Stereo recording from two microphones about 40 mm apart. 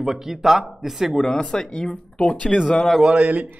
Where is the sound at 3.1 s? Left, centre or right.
Right.